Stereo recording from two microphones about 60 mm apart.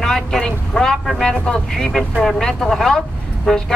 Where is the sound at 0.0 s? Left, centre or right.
Centre.